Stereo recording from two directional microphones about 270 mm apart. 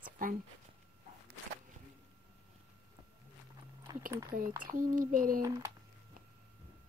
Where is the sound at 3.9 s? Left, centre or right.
Centre.